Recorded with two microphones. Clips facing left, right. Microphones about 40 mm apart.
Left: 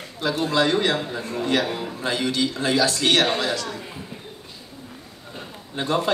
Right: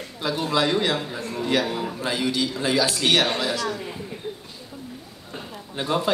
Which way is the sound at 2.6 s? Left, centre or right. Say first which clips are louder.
Left 1 dB; centre.